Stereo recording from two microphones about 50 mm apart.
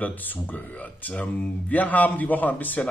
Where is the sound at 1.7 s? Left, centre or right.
Left.